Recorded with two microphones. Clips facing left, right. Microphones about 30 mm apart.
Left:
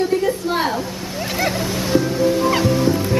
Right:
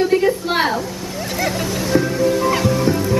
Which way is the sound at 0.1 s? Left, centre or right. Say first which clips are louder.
Right 3 dB; right.